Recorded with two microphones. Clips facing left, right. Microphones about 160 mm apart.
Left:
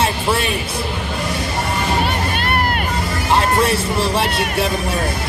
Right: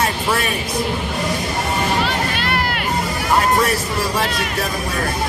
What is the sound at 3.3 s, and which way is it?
Speech, 25° left (ahead or behind).